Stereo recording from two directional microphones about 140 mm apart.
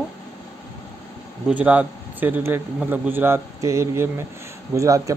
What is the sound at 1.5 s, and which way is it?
A man's voice, 10° right (ahead or behind).